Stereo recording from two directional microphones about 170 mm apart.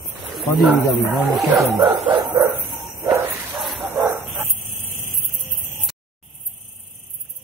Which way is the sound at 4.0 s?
15° right (ahead or behind).